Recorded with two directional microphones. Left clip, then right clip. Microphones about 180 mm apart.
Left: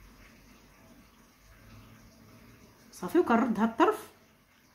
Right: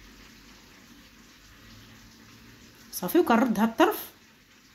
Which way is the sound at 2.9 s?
20° right (ahead or behind).